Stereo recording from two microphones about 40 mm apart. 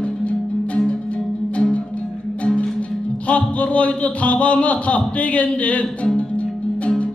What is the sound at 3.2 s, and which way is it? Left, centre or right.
A man's voice, left.